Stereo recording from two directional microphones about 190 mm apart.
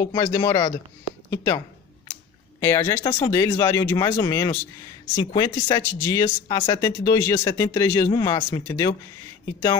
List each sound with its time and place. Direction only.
0.0 s speech: 20° left (ahead or behind)
2.6 s speech: 15° left (ahead or behind)